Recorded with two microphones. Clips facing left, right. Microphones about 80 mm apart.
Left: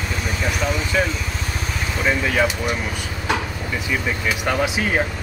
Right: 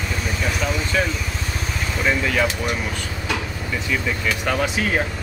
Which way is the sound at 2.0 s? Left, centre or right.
Centre.